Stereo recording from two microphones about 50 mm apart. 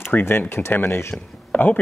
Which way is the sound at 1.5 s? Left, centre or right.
Left.